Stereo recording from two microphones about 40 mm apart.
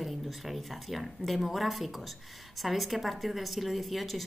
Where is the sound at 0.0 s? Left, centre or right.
Centre.